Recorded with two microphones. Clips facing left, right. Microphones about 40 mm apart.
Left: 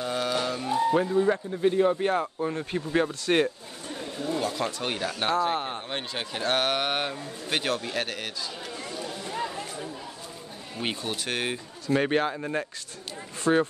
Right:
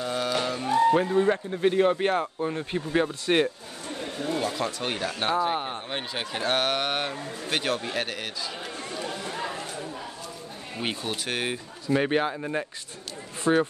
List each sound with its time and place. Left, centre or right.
0.0 s music: centre
1.2 s speech: right
2.4 s speech: centre
4.0 s a sound: right
4.6 s speech: centre
8.9 s chatter: right
11.2 s speech: centre